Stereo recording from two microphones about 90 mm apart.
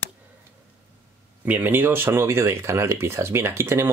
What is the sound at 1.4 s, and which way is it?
Speech, 20° right (ahead or behind).